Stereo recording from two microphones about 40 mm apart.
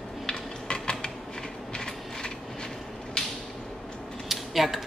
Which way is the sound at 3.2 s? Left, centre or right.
Centre.